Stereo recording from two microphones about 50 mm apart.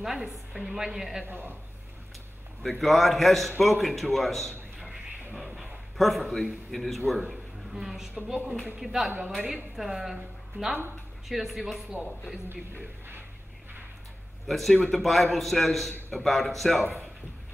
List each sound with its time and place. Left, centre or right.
0.0 s a woman's voice: centre
1.2 s a woman's voice: right
2.6 s a man's voice: centre
4.7 s a sound: centre
5.3 s music: centre
5.9 s a man's voice: centre
9.8 s a man's voice: centre
11.2 s a man's voice: centre
14.4 s a man's voice: centre